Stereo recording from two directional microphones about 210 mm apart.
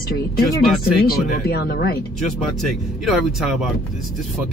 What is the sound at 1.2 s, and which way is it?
Speech, 50° left (ahead or behind).